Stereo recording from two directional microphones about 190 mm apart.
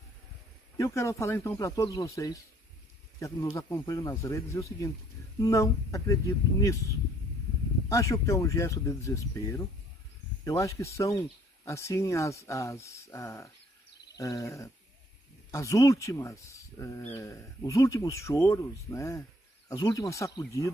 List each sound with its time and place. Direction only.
0.7 s speech: 15° left (ahead or behind)
7.9 s speech: 15° left (ahead or behind)